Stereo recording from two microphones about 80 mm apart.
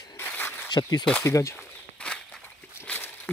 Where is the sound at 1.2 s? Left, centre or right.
Left.